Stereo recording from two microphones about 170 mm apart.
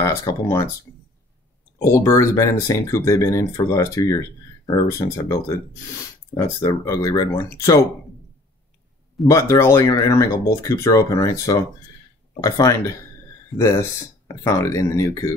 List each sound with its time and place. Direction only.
0.0 s speech: 15° left (ahead or behind)
1.8 s speech: 15° left (ahead or behind)
9.3 s speech: 20° left (ahead or behind)